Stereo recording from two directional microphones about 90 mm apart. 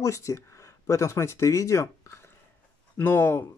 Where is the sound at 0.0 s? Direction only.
35° left (ahead or behind).